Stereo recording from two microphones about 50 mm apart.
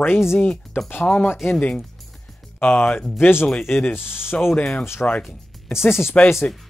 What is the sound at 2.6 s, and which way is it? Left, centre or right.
Speech, left.